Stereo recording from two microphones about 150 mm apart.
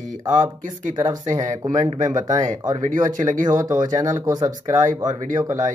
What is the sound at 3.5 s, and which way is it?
Speech, 25° right (ahead or behind).